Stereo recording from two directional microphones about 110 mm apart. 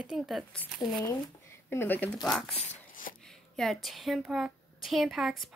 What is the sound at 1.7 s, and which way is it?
Speech, 20° left (ahead or behind).